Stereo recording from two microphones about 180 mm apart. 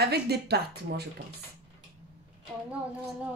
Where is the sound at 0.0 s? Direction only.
65° right (ahead or behind).